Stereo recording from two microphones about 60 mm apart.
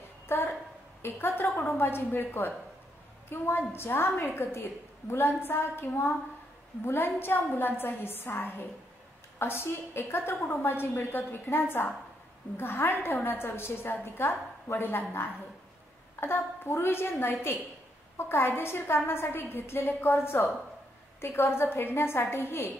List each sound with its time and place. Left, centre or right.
0.3 s a woman's voice: left
10.4 s a woman's voice: left
10.7 s a woman's voice: left